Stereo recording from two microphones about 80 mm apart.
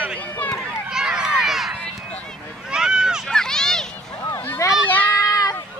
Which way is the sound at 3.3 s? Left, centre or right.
Centre.